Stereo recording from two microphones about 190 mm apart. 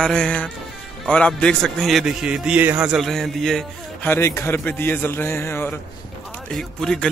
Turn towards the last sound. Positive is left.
turn(degrees=5)  # may be behind; listen again after turning